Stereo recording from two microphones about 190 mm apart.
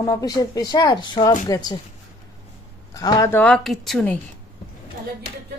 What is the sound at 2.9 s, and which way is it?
Speech, 20° left (ahead or behind).